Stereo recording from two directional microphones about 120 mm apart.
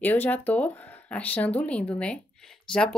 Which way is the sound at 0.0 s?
15° left (ahead or behind).